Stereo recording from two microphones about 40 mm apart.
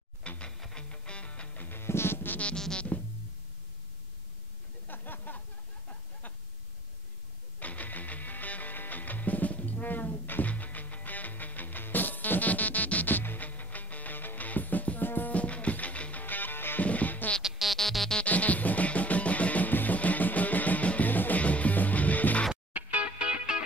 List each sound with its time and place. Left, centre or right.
0.2 s music: left
1.7 s insect: left
2.5 s music: centre
4.8 s a sound: left
7.5 s music: left
15.3 s music: left
16.8 s music: left
17.4 s music: centre
17.7 s music: centre
18.2 s music: left
21.1 s music: left
21.4 s music: left
22.7 s music: right
23.1 s music: right